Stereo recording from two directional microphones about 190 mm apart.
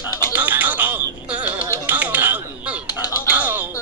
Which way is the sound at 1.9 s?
10° right (ahead or behind).